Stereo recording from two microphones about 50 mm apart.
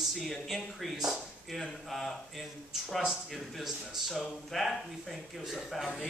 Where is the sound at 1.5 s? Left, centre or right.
Centre.